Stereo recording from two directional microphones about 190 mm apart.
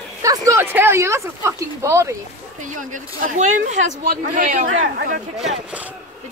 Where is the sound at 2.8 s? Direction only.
40° right (ahead or behind).